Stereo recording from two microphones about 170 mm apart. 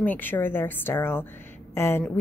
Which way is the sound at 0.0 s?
10° left (ahead or behind).